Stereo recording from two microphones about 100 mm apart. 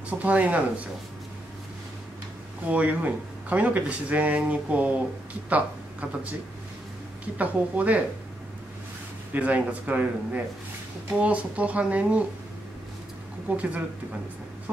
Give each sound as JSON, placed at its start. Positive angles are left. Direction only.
{"t": 0.1, "sound": "speech", "side_deg": -15}
{"t": 2.7, "sound": "speech", "side_deg": -15}
{"t": 7.3, "sound": "speech", "side_deg": -15}
{"t": 9.3, "sound": "speech", "side_deg": -15}
{"t": 13.6, "sound": "speech", "side_deg": -15}